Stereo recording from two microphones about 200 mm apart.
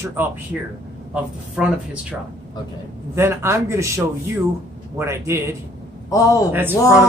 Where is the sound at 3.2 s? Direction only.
15° right (ahead or behind).